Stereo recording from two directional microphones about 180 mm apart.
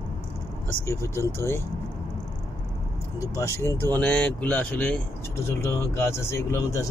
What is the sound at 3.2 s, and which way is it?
Speech, 15° left (ahead or behind).